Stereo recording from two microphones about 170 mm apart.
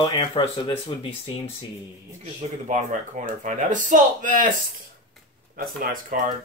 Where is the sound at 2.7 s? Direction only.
50° right (ahead or behind).